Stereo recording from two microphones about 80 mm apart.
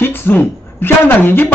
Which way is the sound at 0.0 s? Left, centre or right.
Left.